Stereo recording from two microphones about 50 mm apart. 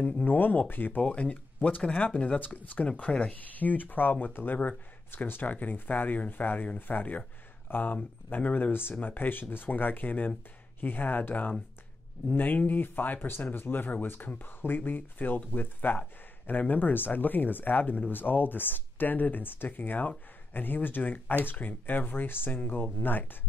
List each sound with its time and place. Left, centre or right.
0.2 s speech: left
1.0 s speech: left